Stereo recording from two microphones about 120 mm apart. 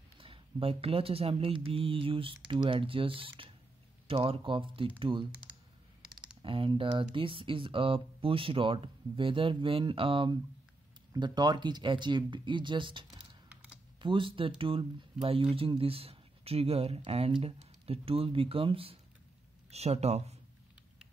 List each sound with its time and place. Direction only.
0.2 s speech: 50° right (ahead or behind)
6.4 s speech: 45° right (ahead or behind)
19.7 s speech: 60° right (ahead or behind)